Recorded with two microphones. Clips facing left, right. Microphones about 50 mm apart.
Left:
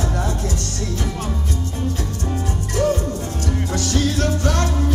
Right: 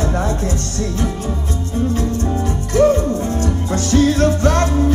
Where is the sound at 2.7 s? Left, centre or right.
Right.